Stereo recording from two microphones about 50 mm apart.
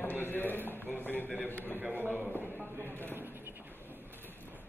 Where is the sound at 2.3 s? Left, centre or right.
Left.